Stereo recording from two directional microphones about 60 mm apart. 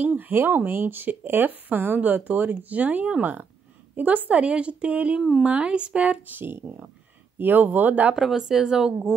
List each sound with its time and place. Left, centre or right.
0.0 s a woman's voice: right
6.3 s a woman's voice: right
8.1 s speech: centre